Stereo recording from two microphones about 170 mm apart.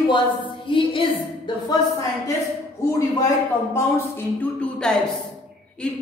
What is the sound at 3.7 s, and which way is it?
Speech, 10° left (ahead or behind).